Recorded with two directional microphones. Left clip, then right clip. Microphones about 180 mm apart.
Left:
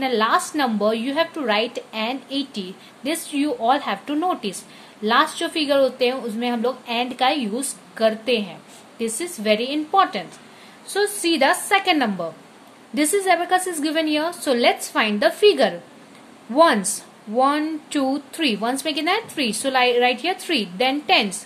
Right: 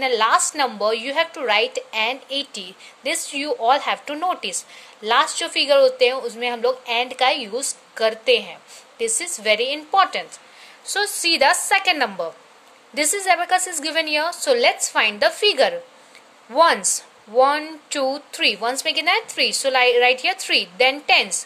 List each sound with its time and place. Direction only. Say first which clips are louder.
0.0 s a woman's voice: right 2 dB; 20° right (ahead or behind)